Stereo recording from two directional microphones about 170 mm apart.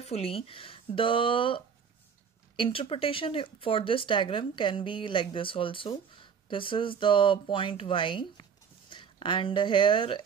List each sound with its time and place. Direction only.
0.0 s speech: 35° left (ahead or behind)